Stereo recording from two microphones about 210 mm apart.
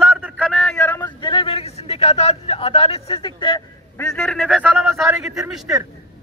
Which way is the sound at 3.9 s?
10° left (ahead or behind).